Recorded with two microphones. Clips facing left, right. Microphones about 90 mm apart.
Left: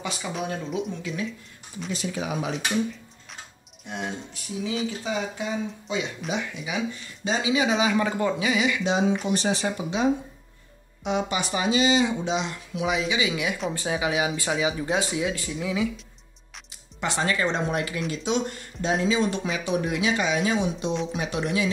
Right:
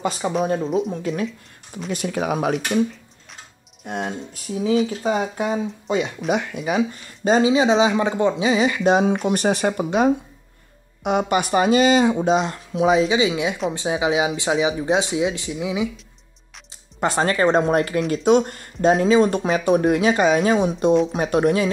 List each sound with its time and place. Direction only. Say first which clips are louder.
0.0 s speech: right 9 dB; 40° right (ahead or behind)
1.9 s speech: right 6 dB; 55° right (ahead or behind)
3.8 s speech: right 5 dB; 50° right (ahead or behind); by 15.9 s 15° right (ahead or behind)
17.0 s speech: right 7 dB; 45° right (ahead or behind)